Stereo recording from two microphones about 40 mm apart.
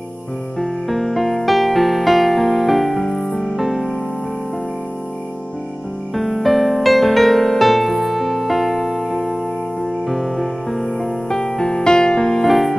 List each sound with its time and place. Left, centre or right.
0.6 s music: centre
6.1 s music: centre
11.2 s music: centre